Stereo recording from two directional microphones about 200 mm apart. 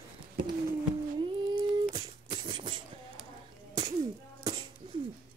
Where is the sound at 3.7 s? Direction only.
20° right (ahead or behind).